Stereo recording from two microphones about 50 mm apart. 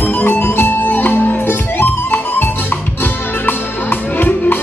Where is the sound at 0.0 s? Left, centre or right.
Left.